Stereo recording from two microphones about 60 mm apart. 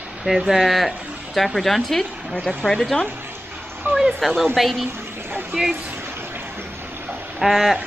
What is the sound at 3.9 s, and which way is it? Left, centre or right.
Speech, centre.